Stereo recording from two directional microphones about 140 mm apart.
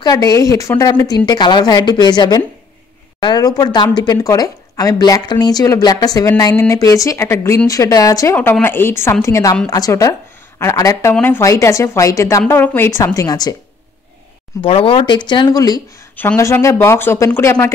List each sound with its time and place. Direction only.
0.0 s speech: 25° left (ahead or behind)
8.4 s speech: 15° left (ahead or behind)
14.6 s speech: 40° left (ahead or behind); by 17.7 s 20° left (ahead or behind)